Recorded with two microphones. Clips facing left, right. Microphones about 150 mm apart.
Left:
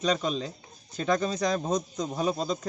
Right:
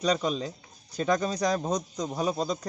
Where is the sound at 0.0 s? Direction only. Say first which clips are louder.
Right 1 dB; 10° right (ahead or behind).